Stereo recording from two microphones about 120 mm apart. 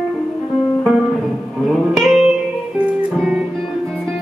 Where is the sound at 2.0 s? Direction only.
Centre (ahead or behind).